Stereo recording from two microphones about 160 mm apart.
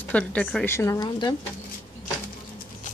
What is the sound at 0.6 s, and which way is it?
Speech, 15° left (ahead or behind).